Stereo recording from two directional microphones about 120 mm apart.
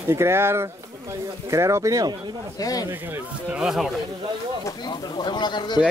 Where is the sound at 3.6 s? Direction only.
5° right (ahead or behind).